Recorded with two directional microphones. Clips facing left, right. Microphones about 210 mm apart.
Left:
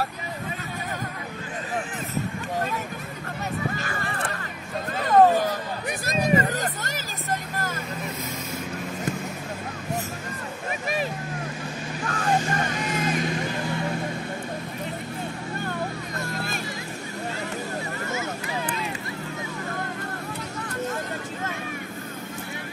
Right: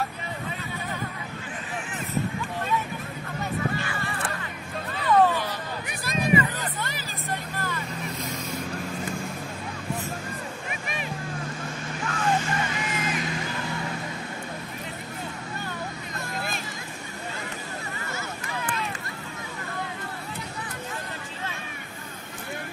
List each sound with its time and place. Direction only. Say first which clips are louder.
3.7 s a sound: even; 45° left (ahead or behind)
4.9 s hubbub: left 4 dB; 45° left (ahead or behind)
10.7 s vehicle: left 10 dB; 35° left (ahead or behind)
12.1 s vehicle: left 2 dB; 45° left (ahead or behind)